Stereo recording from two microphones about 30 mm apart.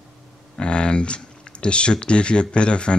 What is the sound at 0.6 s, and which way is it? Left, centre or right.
Speech, left.